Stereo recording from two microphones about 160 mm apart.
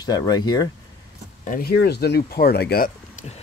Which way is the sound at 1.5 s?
80° left.